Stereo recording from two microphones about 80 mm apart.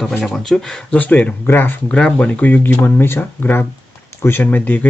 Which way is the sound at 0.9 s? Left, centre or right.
Centre.